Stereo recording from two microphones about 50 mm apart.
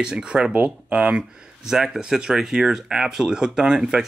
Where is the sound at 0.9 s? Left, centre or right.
Right.